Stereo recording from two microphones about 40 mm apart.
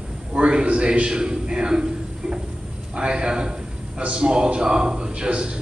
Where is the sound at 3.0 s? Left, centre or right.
Right.